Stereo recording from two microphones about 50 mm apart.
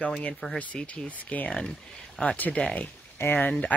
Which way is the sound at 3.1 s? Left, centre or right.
Left.